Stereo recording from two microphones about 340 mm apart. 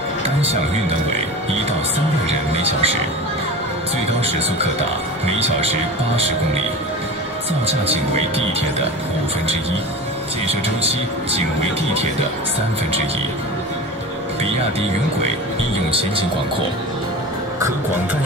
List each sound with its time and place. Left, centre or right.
2.5 s speech: centre
7.6 s speech: centre
15.9 s speech: centre